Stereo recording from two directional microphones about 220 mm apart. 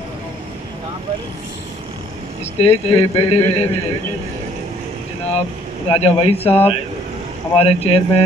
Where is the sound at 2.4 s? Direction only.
30° left (ahead or behind).